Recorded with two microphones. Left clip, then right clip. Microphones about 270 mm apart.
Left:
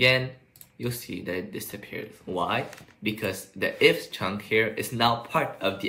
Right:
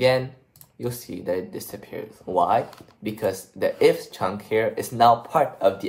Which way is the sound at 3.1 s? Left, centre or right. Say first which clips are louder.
Right 4 dB; centre.